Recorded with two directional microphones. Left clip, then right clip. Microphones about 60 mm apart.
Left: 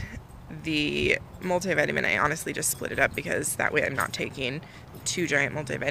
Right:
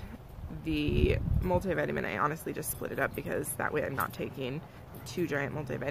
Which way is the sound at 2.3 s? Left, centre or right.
Centre.